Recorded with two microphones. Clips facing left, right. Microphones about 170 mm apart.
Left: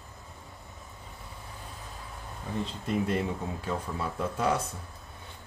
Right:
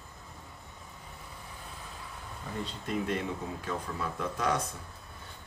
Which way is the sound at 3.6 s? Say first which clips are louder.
Left 3 dB; 30° left (ahead or behind).